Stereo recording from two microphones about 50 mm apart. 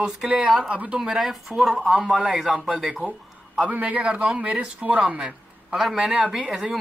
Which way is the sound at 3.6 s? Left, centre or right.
Right.